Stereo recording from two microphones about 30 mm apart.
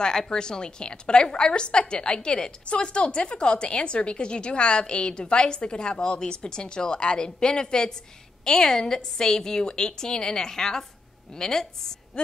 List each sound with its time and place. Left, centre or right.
0.3 s a woman's voice: left